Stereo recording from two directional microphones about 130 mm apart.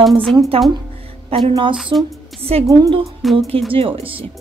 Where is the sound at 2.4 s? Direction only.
50° right (ahead or behind).